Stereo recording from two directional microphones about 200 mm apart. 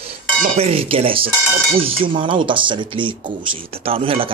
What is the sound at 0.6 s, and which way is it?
Speech, 30° right (ahead or behind).